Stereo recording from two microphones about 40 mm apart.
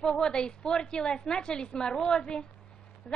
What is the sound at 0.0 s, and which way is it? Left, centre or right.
A woman's voice, centre.